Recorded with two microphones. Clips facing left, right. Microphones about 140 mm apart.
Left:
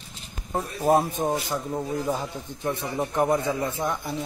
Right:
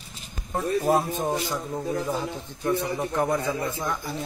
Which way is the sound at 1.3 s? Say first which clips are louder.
Left 1 dB; 10° left (ahead or behind).